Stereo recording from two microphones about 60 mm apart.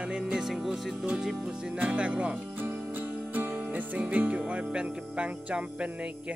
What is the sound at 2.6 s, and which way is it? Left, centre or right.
Music, right.